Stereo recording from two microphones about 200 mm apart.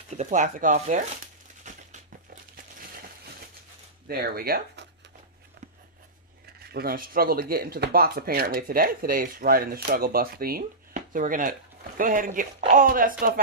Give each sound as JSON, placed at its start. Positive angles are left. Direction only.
{"t": 0.1, "sound": "speech", "side_deg": -35}
{"t": 1.6, "sound": "a sound", "side_deg": -35}
{"t": 4.1, "sound": "speech", "side_deg": -50}
{"t": 6.6, "sound": "speech", "side_deg": -50}